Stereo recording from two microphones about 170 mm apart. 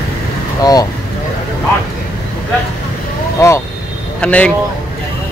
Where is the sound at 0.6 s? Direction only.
20° left (ahead or behind).